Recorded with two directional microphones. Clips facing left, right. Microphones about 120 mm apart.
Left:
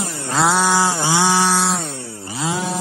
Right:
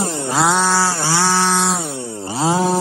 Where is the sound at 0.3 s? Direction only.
Centre (ahead or behind).